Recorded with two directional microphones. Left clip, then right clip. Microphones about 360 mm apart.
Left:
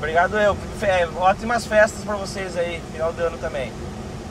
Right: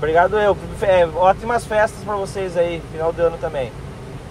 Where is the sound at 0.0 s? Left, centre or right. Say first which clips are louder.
Right 3 dB; centre.